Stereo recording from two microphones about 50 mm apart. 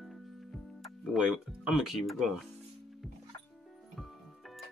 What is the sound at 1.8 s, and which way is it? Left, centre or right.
Speech, centre.